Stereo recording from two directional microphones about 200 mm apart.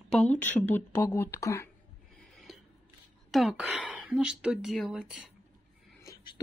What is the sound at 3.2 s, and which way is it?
Speech, centre (ahead or behind).